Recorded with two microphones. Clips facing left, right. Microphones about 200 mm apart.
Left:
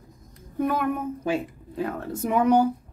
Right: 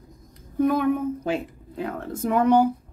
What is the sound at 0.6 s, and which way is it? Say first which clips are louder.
Speech: right 4 dB; 5° left (ahead or behind).